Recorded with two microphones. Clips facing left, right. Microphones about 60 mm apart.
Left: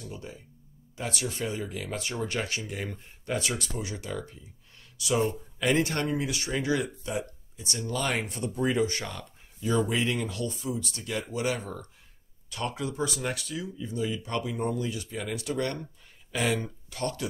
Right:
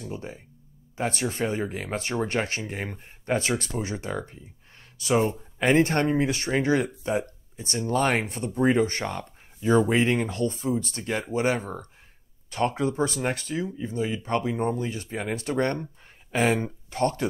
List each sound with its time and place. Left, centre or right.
0.0 s speech: right